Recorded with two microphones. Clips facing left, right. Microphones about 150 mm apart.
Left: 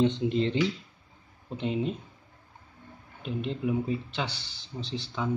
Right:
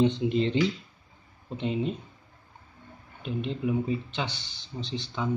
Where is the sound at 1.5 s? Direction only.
Centre (ahead or behind).